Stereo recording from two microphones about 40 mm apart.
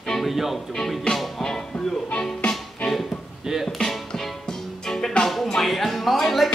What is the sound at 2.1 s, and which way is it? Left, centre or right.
Music, left.